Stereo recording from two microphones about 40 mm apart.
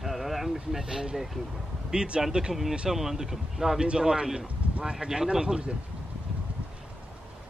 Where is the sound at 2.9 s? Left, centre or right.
Centre.